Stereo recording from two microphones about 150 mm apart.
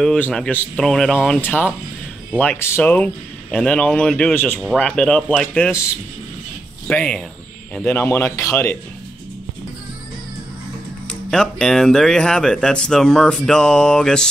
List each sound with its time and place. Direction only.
0.0 s speech: 5° left (ahead or behind)
6.9 s speech: 5° left (ahead or behind)
11.1 s speech: 5° left (ahead or behind)